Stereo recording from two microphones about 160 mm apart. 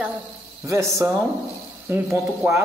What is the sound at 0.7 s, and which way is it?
Speech, 20° right (ahead or behind).